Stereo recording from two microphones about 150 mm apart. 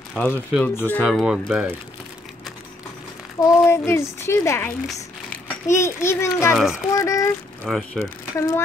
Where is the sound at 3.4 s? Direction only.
15° left (ahead or behind).